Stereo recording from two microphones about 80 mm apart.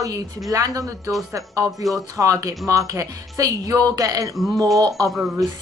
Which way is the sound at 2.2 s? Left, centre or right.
Right.